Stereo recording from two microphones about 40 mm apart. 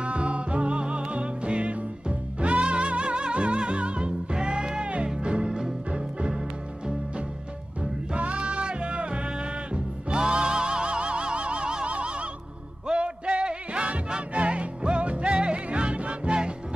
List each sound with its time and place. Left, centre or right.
0.0 s music: right
8.1 s music: right